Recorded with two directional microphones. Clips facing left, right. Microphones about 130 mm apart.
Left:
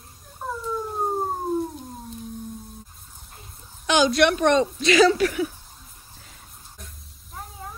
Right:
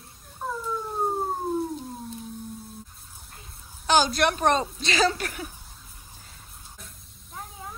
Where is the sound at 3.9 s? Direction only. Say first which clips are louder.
Left 3 dB; 40° right (ahead or behind).